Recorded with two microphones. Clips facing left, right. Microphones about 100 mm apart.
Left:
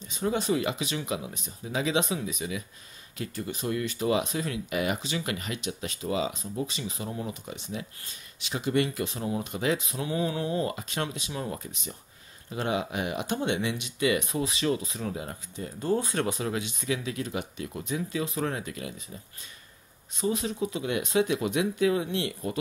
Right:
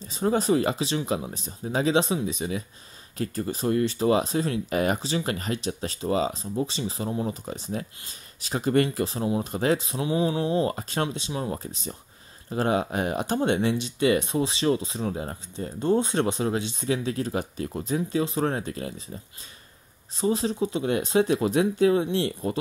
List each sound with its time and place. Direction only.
0.0 s speech: 35° right (ahead or behind)
10.0 s mantra: 20° right (ahead or behind)
10.7 s speech: 35° right (ahead or behind)
20.2 s speech: 35° right (ahead or behind)